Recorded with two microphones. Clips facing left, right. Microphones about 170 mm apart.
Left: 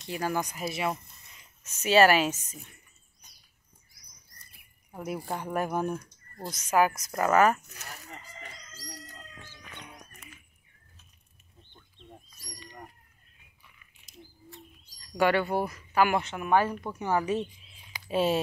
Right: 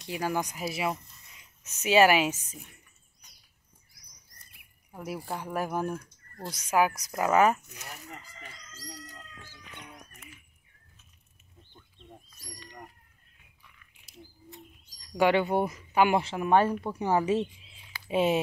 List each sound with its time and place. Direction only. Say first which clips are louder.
0.0 s speech: even; 10° right (ahead or behind)
4.9 s speech: left 2 dB; centre (ahead or behind)
5.9 s speech: left 1 dB; 10° left (ahead or behind)
6.5 s speech: left 1 dB; 10° right (ahead or behind)
12.3 s a sound: even; centre (ahead or behind)
14.0 s bird: right 1 dB; 15° right (ahead or behind)
16.2 s speech: right 2 dB; 30° right (ahead or behind)